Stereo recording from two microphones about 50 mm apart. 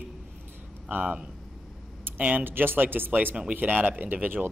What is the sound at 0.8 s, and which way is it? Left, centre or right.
Speech, right.